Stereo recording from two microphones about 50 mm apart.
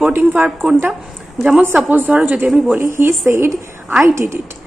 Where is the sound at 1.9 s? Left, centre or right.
Right.